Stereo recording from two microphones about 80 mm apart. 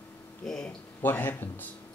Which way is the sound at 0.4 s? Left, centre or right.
Centre.